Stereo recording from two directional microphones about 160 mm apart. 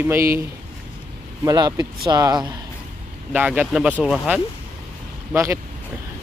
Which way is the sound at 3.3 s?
10° right (ahead or behind).